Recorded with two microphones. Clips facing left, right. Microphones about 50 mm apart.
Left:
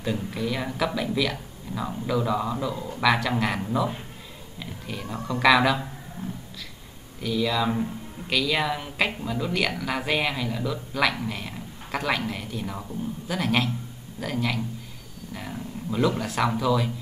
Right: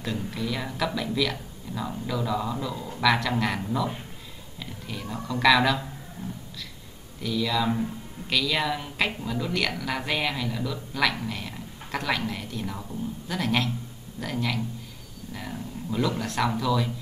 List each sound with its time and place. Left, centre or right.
0.0 s speech: centre
7.2 s speech: centre